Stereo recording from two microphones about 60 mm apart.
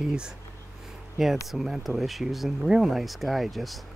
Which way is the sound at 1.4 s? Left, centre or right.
Centre.